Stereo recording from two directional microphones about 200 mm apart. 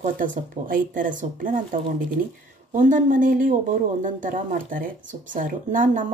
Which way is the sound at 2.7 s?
40° right (ahead or behind).